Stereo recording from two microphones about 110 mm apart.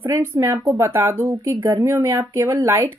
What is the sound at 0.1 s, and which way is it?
Speech, 25° right (ahead or behind).